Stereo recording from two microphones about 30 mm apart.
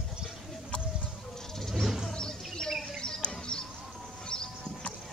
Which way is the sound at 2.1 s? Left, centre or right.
Left.